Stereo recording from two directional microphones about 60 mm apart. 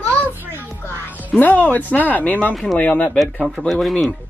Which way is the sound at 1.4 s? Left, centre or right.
Left.